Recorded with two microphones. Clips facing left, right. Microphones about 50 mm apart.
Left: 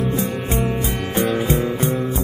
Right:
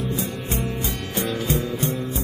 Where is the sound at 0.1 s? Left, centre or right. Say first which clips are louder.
Left 5 dB; left.